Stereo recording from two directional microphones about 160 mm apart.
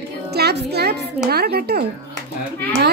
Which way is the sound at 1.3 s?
75° right (ahead or behind).